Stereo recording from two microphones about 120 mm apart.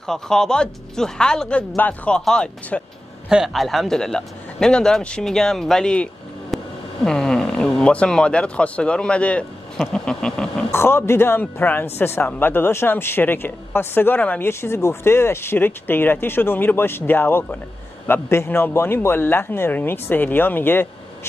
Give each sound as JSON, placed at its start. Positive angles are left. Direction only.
{"t": 0.0, "sound": "speech", "side_deg": 5}
{"t": 3.3, "sound": "speech", "side_deg": -5}
{"t": 6.5, "sound": "a sound", "side_deg": 0}
{"t": 7.1, "sound": "speech", "side_deg": 5}
{"t": 10.7, "sound": "a woman's voice", "side_deg": 20}